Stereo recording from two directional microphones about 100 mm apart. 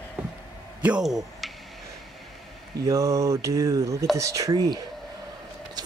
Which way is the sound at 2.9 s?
35° right (ahead or behind).